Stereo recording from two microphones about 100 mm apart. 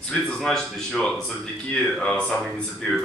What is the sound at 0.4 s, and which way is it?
Speech, 5° left (ahead or behind).